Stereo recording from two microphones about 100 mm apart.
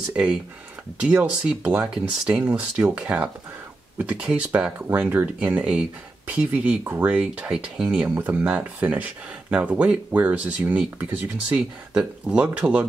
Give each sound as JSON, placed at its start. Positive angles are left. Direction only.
{"t": 0.1, "sound": "speech", "side_deg": -10}
{"t": 1.6, "sound": "speech", "side_deg": -20}
{"t": 2.0, "sound": "speech", "side_deg": -10}
{"t": 7.2, "sound": "speech", "side_deg": -10}